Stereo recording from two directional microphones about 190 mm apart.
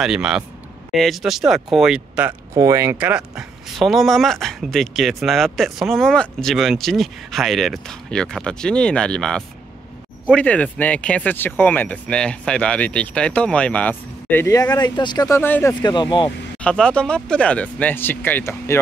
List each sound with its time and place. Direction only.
0.0 s speech: 5° right (ahead or behind); by 15.7 s 15° left (ahead or behind)
15.8 s speech: 25° left (ahead or behind)
16.5 s speech: 5° left (ahead or behind)